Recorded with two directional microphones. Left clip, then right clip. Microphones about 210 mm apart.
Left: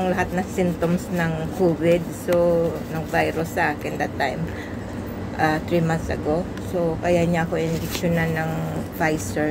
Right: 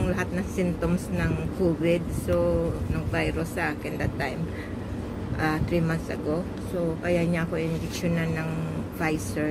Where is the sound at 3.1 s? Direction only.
5° right (ahead or behind).